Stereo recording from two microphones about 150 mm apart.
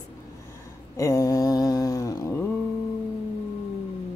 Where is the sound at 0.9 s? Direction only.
20° left (ahead or behind).